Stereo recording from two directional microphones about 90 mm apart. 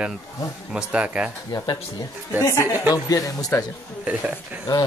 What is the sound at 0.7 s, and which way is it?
Speech, 15° right (ahead or behind).